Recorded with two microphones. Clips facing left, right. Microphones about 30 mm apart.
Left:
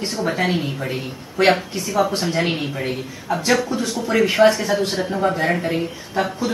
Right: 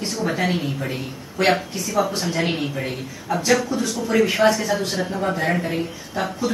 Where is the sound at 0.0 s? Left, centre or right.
Centre.